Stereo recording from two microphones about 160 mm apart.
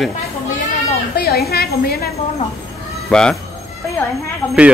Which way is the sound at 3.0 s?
5° left (ahead or behind).